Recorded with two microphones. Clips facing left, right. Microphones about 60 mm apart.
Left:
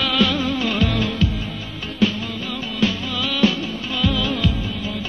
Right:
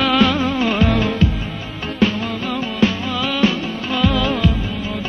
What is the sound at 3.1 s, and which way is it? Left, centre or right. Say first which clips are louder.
Music: right 2 dB; right.